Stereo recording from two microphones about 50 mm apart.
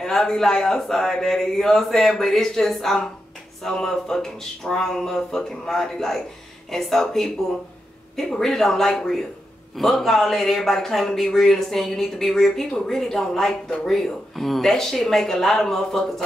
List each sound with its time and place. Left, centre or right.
0.0 s speech: centre